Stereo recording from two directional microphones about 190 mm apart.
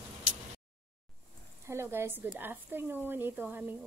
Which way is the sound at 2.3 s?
10° right (ahead or behind).